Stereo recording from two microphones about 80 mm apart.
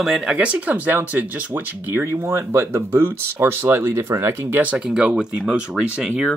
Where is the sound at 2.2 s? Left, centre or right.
Right.